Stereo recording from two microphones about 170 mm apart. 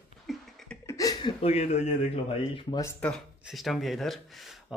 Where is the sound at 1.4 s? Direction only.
40° left (ahead or behind).